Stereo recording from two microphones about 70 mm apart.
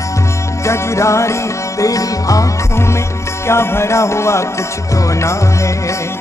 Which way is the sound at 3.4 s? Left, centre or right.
Left.